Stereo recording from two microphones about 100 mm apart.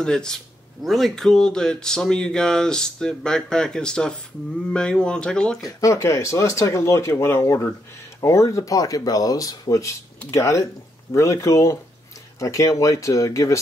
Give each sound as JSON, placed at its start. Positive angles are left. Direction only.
{"t": 0.0, "sound": "speech", "side_deg": 5}
{"t": 5.6, "sound": "speech", "side_deg": 35}